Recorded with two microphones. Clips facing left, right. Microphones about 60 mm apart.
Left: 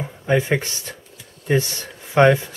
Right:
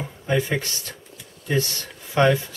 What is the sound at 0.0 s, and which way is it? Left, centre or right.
Speech, left.